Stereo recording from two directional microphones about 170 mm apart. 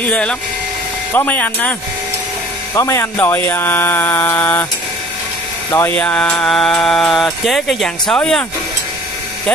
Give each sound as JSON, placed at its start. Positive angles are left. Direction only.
{"t": 0.0, "sound": "speech", "side_deg": 5}
{"t": 5.7, "sound": "mantra", "side_deg": 15}